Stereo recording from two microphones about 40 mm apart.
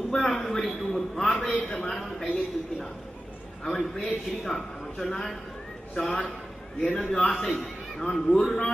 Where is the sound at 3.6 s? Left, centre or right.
Centre.